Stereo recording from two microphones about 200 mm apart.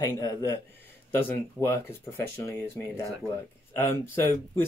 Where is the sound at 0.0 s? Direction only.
20° left (ahead or behind).